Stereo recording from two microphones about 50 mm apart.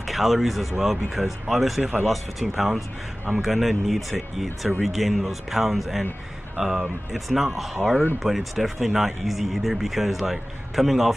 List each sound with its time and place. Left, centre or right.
0.0 s speech: centre
6.5 s speech: centre
7.1 s speech: centre